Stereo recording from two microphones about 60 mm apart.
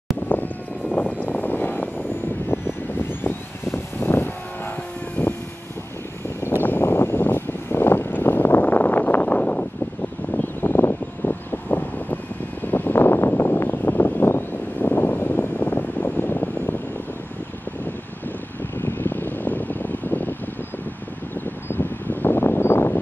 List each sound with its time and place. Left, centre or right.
0.9 s vehicle: left
2.9 s vehicle: left
5.2 s vehicle: left
6.6 s vehicle: left
8.1 s a sound: left
10.3 s vehicle: left
12.6 s a sound: left
13.4 s vehicle: left
18.8 s vehicle: left
21.6 s a sound: left